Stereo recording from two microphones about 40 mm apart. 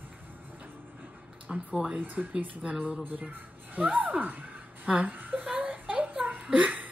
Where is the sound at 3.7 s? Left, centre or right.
Right.